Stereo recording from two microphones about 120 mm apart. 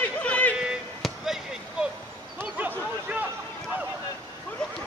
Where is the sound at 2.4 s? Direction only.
15° right (ahead or behind).